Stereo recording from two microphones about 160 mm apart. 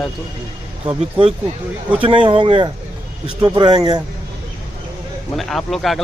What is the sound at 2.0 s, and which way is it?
Speech, 30° right (ahead or behind).